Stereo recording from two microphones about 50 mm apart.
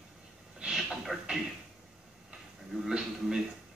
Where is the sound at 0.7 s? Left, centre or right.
Centre.